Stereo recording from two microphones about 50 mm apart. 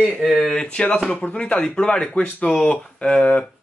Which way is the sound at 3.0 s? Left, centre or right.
Left.